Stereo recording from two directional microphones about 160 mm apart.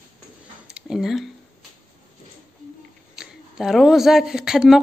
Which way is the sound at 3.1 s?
Centre (ahead or behind).